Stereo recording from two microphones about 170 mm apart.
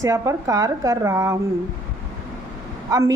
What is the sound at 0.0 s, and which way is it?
A woman's voice, 20° right (ahead or behind).